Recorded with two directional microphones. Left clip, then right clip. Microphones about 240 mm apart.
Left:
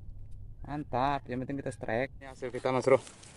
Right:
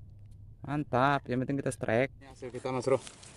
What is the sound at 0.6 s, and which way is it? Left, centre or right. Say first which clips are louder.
Speech: right 3 dB; right.